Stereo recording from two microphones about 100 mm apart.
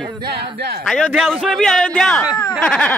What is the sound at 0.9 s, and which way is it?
Speech, 5° left (ahead or behind).